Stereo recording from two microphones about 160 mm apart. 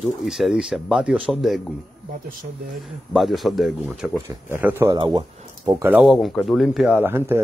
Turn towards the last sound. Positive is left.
turn(degrees=-15)  # may be behind; listen again after turning